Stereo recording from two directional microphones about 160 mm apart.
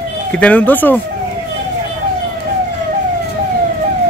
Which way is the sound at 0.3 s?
10° left (ahead or behind).